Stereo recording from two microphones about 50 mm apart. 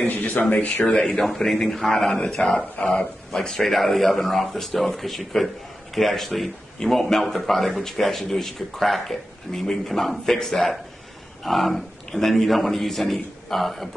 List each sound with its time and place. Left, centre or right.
0.4 s speech: left
1.0 s a man's voice: centre